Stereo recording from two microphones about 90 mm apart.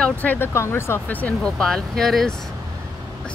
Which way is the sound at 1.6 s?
5° left (ahead or behind).